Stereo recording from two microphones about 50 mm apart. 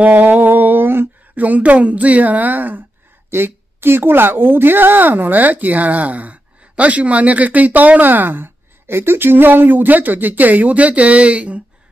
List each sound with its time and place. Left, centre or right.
0.0 s a sound: right
1.3 s a woman's voice: right
3.3 s a woman's voice: right